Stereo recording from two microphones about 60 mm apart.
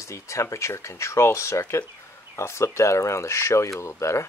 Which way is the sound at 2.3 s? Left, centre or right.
Left.